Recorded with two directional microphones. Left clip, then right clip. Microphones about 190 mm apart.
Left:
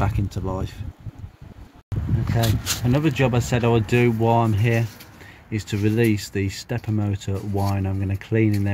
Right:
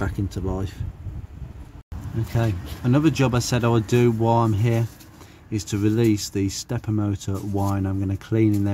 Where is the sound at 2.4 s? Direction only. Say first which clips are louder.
Left 4 dB; centre (ahead or behind).